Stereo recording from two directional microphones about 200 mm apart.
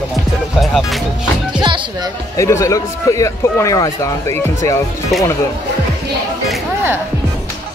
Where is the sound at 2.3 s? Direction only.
15° left (ahead or behind).